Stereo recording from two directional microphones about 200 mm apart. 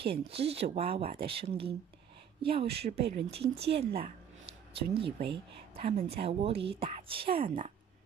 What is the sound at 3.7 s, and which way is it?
Speech, 50° right (ahead or behind).